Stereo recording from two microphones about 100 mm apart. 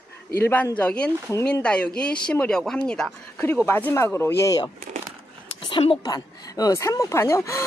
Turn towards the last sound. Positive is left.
turn(degrees=30)  # may be behind; listen again after turning